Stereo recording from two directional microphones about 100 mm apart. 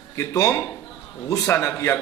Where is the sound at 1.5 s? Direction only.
30° left (ahead or behind).